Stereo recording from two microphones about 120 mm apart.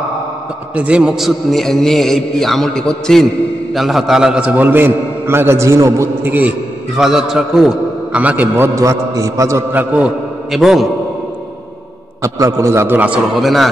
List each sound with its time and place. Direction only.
0.7 s a man's voice: 10° right (ahead or behind)
7.0 s a man's voice: 5° right (ahead or behind)
10.5 s a man's voice: centre (ahead or behind)
12.2 s a man's voice: 25° right (ahead or behind)
13.3 s a man's voice: centre (ahead or behind)